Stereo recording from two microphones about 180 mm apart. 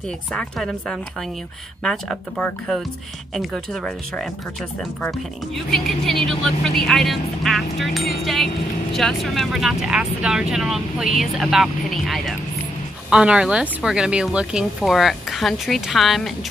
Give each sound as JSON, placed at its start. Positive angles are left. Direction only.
{"t": 0.3, "sound": "speech", "side_deg": 5}